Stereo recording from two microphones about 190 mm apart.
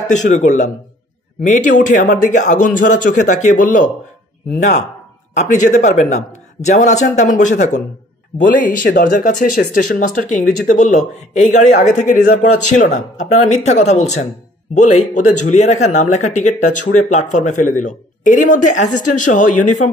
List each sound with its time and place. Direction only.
0.1 s speech: 40° left (ahead or behind)
5.3 s speech: 40° left (ahead or behind)